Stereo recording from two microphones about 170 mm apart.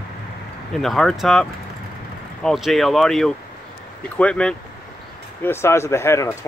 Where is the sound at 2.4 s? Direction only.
Centre (ahead or behind).